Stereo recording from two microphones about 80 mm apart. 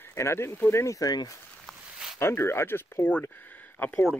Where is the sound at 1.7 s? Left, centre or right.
Centre.